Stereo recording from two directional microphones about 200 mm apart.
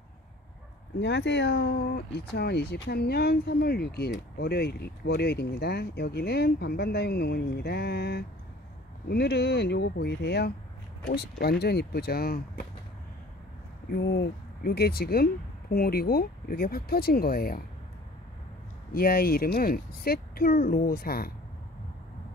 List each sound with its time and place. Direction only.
0.9 s speech: 60° left (ahead or behind)
13.9 s speech: 55° left (ahead or behind)
18.9 s speech: 50° left (ahead or behind)